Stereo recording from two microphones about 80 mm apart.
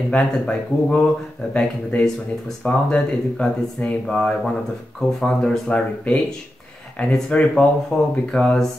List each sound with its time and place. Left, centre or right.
0.1 s speech: centre